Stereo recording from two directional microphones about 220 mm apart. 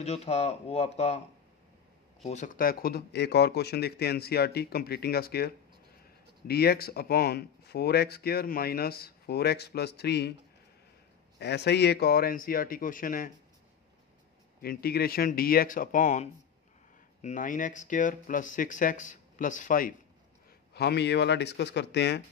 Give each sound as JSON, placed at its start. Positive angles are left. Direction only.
{"t": 0.0, "sound": "speech", "side_deg": 30}
{"t": 2.2, "sound": "speech", "side_deg": 35}
{"t": 11.3, "sound": "speech", "side_deg": 50}
{"t": 14.6, "sound": "speech", "side_deg": 45}
{"t": 20.7, "sound": "speech", "side_deg": 50}